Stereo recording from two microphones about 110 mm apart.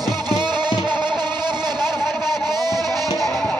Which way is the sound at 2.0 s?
Centre (ahead or behind).